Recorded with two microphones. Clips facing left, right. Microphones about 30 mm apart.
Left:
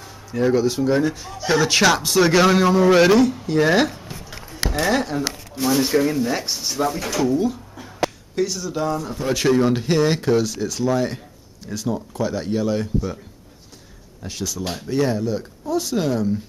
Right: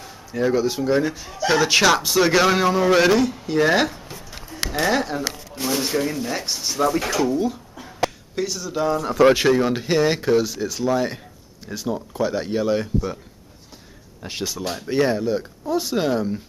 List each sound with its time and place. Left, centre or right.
0.3 s a man's voice: centre
7.1 s a sound: centre
9.5 s speech: centre
14.2 s speech: right